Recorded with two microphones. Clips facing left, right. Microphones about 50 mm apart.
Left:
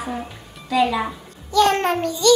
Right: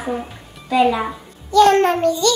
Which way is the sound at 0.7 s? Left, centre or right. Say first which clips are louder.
Right 3 dB; right.